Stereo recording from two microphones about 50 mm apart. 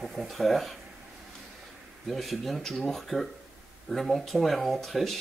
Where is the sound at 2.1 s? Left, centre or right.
Centre.